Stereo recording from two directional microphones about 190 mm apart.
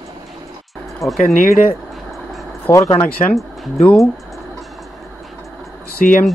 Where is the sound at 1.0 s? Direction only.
15° left (ahead or behind).